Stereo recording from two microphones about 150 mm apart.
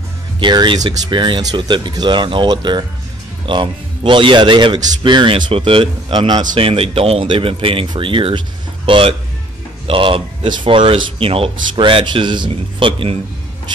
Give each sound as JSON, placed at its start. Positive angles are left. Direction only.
{"t": 0.4, "sound": "speech", "side_deg": -30}